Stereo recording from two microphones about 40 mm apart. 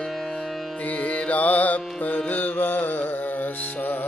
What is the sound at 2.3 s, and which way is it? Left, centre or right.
Music, left.